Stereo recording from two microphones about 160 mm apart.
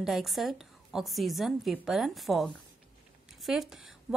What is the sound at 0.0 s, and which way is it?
A woman's voice, centre (ahead or behind).